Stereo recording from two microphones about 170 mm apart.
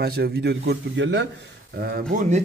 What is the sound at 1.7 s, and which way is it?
Speech, 65° right (ahead or behind).